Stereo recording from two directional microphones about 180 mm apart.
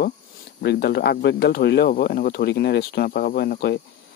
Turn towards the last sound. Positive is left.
turn(degrees=60)  # may be behind; listen again after turning